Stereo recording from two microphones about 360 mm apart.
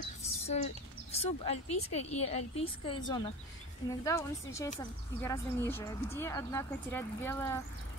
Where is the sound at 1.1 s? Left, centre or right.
Centre.